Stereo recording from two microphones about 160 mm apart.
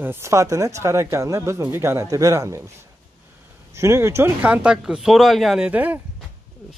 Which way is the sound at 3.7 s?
15° right (ahead or behind).